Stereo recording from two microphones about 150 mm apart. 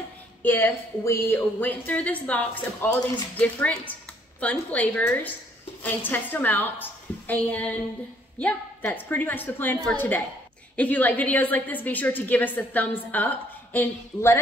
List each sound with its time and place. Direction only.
0.4 s a woman's voice: 15° left (ahead or behind)